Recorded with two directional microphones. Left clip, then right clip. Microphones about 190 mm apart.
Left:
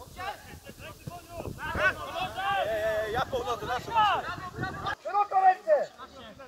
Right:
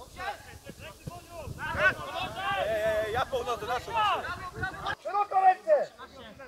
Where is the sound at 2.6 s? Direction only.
20° right (ahead or behind).